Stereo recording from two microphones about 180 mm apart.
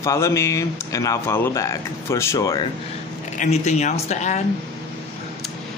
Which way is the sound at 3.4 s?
40° left (ahead or behind).